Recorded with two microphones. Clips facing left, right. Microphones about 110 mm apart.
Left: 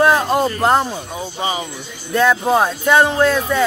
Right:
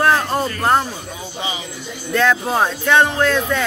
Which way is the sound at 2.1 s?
10° left (ahead or behind).